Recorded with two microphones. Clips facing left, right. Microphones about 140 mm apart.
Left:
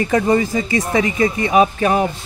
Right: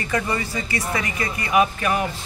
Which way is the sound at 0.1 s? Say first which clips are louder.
Left 8 dB; 45° left (ahead or behind).